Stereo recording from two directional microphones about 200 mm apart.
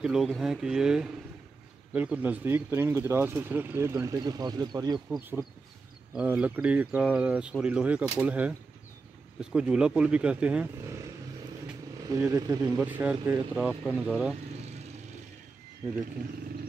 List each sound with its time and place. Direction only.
0.0 s speech: centre (ahead or behind); by 5.0 s 20° right (ahead or behind)
5.1 s speech: centre (ahead or behind)
12.1 s speech: 15° right (ahead or behind)
12.7 s speech: 5° right (ahead or behind)